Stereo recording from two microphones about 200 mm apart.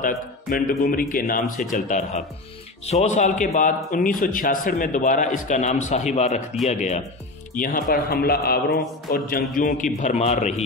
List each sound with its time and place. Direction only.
0.0 s a man's voice: 45° left (ahead or behind)